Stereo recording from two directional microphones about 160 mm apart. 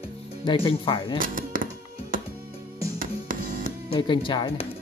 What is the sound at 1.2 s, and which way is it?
Music, 60° right (ahead or behind).